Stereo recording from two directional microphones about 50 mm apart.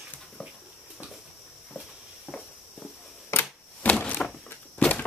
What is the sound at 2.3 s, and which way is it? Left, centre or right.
Walk, left.